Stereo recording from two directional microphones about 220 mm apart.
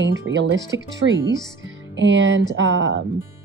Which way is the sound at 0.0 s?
55° right (ahead or behind).